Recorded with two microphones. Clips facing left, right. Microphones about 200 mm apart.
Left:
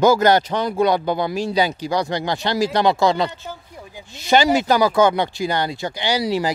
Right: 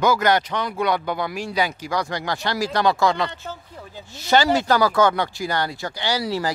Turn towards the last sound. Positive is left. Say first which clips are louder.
# left 3 dB
turn(degrees=15)  # may be behind; listen again after turning